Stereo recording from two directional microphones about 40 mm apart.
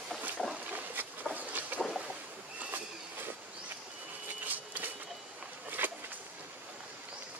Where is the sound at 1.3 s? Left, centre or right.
Right.